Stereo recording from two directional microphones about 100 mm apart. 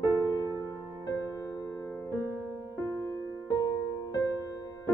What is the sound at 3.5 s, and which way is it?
Music, 35° left (ahead or behind).